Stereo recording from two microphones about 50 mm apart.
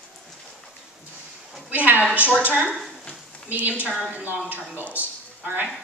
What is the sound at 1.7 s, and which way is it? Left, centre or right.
Speech, right.